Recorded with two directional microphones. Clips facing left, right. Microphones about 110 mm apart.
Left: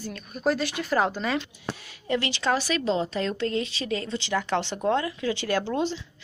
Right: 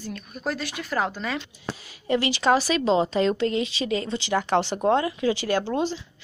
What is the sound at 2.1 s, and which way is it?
Speech, 10° right (ahead or behind).